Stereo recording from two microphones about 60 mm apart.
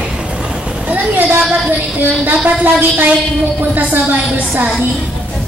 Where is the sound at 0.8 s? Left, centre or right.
Right.